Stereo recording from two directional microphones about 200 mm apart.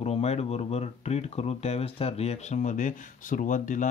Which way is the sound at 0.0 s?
30° left (ahead or behind).